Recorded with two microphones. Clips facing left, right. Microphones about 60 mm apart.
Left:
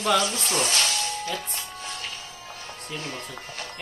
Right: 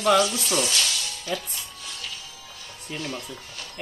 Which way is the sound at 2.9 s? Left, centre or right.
Left.